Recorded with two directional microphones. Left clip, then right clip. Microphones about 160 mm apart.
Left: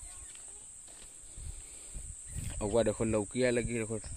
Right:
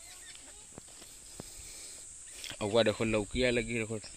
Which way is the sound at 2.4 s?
5° left (ahead or behind).